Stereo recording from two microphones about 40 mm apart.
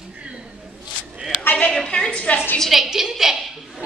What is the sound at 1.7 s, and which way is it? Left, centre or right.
Speech, centre.